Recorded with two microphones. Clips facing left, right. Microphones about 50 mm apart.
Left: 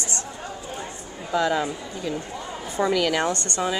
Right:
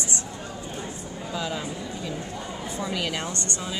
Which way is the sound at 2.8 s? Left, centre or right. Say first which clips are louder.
Left 9 dB; left.